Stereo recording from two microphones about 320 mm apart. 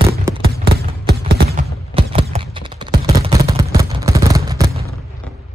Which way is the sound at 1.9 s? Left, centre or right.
Centre.